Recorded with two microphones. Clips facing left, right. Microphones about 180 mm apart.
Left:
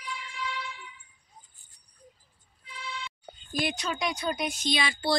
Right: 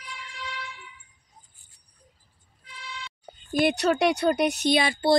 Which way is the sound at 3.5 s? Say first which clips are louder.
Right 9 dB; 65° right (ahead or behind).